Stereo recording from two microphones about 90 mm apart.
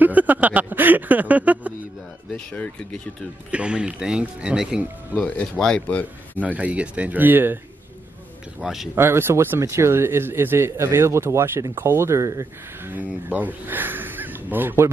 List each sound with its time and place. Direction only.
0.0 s speech: 20° right (ahead or behind)
2.3 s speech: 15° left (ahead or behind)
3.5 s speech: 10° right (ahead or behind)
5.1 s speech: 10° left (ahead or behind)
6.4 s speech: 15° right (ahead or behind)
8.5 s speech: 5° right (ahead or behind)
8.9 s speech: 25° right (ahead or behind)
12.9 s speech: 20° right (ahead or behind)